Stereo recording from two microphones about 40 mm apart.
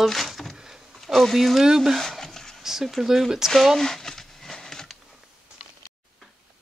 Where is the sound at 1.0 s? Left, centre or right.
Centre.